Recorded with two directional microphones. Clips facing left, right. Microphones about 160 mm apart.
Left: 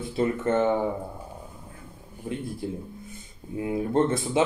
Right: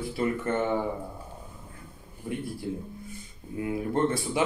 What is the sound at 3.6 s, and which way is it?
Speech, 25° left (ahead or behind).